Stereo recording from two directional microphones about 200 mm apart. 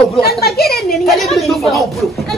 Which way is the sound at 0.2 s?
50° left (ahead or behind).